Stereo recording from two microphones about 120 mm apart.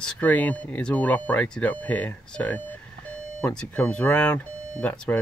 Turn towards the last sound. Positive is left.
turn(degrees=10)  # may be behind; listen again after turning